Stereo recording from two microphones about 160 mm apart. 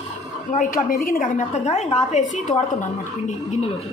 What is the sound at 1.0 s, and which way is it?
A woman's voice, 60° left (ahead or behind).